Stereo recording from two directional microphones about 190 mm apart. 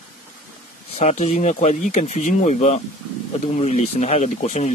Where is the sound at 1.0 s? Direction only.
35° left (ahead or behind).